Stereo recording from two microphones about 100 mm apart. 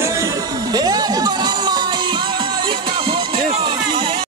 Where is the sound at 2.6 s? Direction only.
55° right (ahead or behind).